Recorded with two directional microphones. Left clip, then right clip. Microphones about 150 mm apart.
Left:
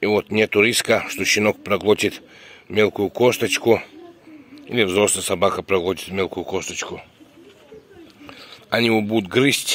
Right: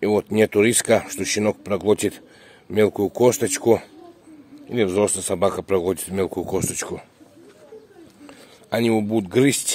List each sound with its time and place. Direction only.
0.0 s speech: 30° right (ahead or behind)
4.6 s speech: 10° right (ahead or behind); by 7.1 s 55° right (ahead or behind)
8.3 s speech: 20° right (ahead or behind)